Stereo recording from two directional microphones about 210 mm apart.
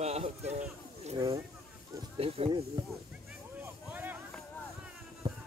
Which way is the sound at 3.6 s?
10° right (ahead or behind).